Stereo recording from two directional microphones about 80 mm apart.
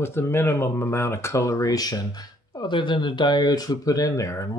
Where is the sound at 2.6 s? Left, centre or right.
Left.